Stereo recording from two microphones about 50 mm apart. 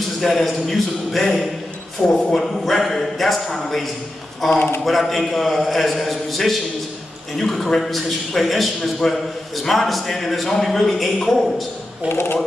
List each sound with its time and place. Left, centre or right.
0.2 s a man's voice: centre
4.6 s a man's voice: left
4.8 s a man's voice: centre
12.1 s a man's voice: left